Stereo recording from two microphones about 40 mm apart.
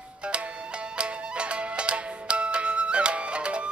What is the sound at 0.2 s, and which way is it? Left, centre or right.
Music, right.